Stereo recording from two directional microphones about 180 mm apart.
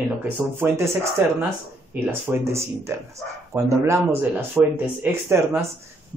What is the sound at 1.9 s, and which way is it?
Speech, 10° right (ahead or behind).